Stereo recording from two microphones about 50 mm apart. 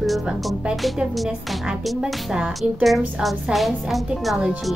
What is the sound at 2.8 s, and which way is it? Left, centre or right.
A woman's voice, centre.